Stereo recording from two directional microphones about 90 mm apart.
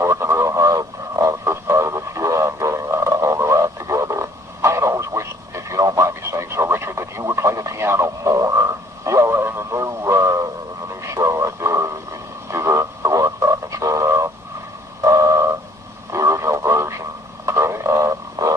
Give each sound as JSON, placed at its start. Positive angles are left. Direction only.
{"t": 0.0, "sound": "radio", "side_deg": -30}
{"t": 16.1, "sound": "radio", "side_deg": -35}
{"t": 18.4, "sound": "a sound", "side_deg": -35}